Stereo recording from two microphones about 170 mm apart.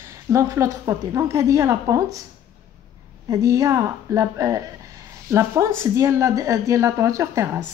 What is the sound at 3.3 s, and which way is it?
A woman's voice, 20° right (ahead or behind).